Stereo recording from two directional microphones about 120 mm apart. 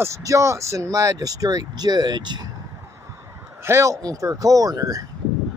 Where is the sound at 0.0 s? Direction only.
25° right (ahead or behind).